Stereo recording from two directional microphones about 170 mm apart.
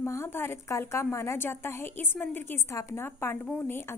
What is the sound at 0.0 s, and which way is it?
A woman's voice, 15° left (ahead or behind).